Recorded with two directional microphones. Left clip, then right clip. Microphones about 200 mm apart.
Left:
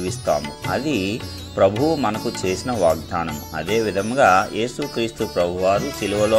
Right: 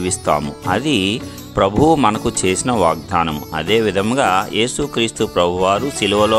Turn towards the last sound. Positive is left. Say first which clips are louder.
# right 4 dB
turn(degrees=-30)  # may be behind; listen again after turning